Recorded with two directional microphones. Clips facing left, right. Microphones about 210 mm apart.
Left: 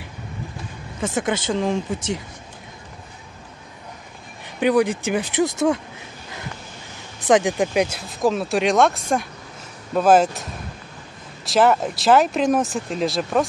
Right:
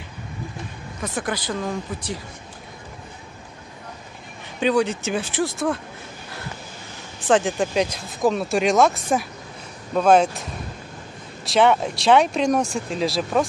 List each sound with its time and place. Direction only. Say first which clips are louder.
1.0 s speech: left 4 dB; 25° left (ahead or behind)
4.6 s speech: left 2 dB; 15° left (ahead or behind)
7.3 s speech: left 2 dB; 15° left (ahead or behind)
11.4 s speech: even; centre (ahead or behind)